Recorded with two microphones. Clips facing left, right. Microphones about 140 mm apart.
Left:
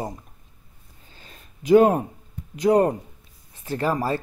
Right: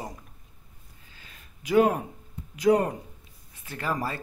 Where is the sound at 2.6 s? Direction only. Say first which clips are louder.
Left 4 dB; 35° left (ahead or behind).